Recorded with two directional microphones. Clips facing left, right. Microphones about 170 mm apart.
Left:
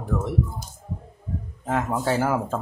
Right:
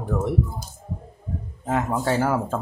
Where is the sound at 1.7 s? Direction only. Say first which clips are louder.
Right 1 dB; centre (ahead or behind).